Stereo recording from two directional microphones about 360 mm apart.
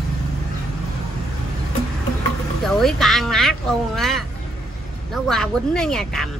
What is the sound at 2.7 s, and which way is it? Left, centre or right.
A woman's voice, centre.